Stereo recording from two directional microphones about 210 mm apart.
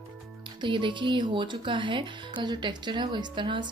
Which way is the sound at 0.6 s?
25° right (ahead or behind).